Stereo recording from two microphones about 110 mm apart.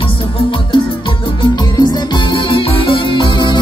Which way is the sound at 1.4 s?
40° left (ahead or behind).